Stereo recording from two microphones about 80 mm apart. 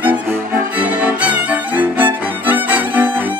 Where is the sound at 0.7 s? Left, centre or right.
Centre.